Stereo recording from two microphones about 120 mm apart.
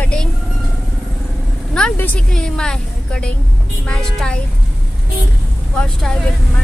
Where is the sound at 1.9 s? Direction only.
15° left (ahead or behind).